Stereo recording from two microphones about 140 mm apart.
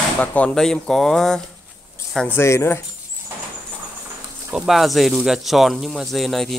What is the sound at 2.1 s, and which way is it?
Speech, 15° left (ahead or behind).